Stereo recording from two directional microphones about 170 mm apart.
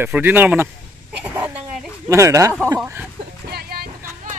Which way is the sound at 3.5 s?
65° right (ahead or behind).